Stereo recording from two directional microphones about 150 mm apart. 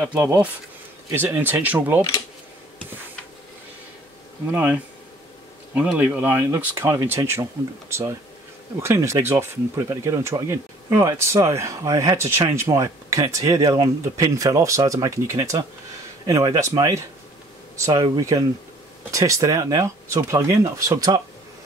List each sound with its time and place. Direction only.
0.2 s speech: 15° right (ahead or behind)
4.5 s speech: 10° right (ahead or behind)
5.8 s speech: 10° right (ahead or behind)